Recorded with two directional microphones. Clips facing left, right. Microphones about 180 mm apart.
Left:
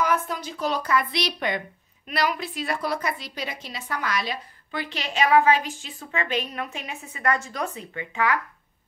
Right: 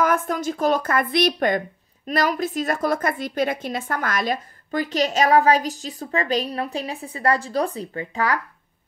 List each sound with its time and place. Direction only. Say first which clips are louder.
0.0 s a woman's voice: right 4 dB; 50° right (ahead or behind)